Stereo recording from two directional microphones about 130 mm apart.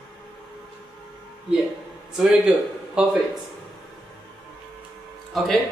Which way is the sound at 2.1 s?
5° right (ahead or behind).